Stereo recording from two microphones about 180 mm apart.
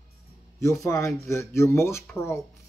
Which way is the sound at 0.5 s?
15° left (ahead or behind).